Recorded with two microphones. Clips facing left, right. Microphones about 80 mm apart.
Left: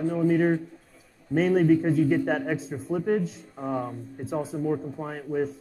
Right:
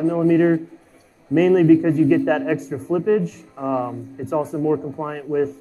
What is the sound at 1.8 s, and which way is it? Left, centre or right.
Speech, right.